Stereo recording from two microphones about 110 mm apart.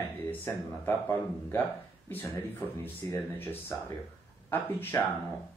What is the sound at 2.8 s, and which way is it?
Speech, 20° left (ahead or behind).